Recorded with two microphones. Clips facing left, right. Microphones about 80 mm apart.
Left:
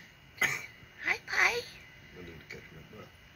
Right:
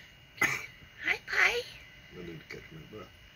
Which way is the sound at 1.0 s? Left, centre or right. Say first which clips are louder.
Right 1 dB; centre.